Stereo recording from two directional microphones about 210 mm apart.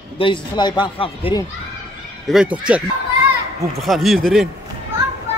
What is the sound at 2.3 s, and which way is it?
Speech, 5° right (ahead or behind).